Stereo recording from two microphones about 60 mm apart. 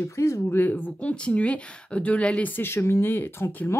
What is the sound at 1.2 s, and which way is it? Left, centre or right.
Speech, left.